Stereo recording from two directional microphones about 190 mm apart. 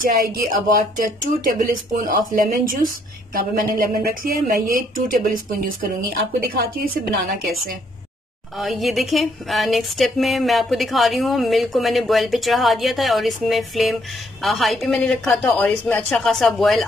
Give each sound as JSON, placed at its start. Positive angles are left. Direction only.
{"t": 0.0, "sound": "speech", "side_deg": -50}
{"t": 4.0, "sound": "speech", "side_deg": -50}
{"t": 8.5, "sound": "speech", "side_deg": 0}